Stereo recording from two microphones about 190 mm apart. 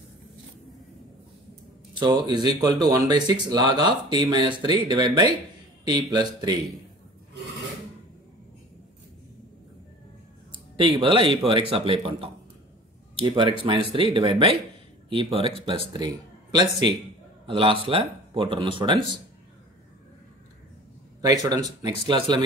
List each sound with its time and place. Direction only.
2.0 s speech: 25° right (ahead or behind)
10.8 s speech: 25° right (ahead or behind)
15.3 s speech: 30° right (ahead or behind)
17.5 s speech: 30° right (ahead or behind)
21.2 s speech: 20° right (ahead or behind)